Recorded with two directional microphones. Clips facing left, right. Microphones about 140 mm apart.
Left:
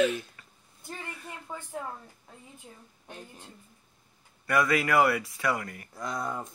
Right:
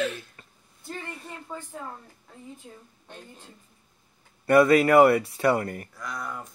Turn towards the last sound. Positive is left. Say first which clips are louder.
# left 2 dB
turn(degrees=25)  # may be behind; listen again after turning